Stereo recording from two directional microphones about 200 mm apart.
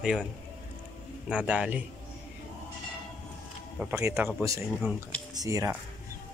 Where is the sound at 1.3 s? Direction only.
5° right (ahead or behind).